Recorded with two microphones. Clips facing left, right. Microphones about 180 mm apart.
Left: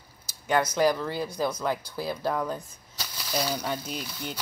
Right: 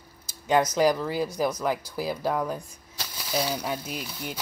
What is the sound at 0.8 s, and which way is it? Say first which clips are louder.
Speech: right 2 dB; 15° right (ahead or behind).